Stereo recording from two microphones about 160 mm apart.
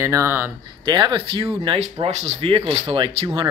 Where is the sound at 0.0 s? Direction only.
15° right (ahead or behind).